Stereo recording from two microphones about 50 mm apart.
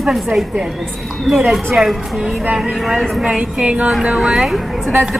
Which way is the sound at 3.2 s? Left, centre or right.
Right.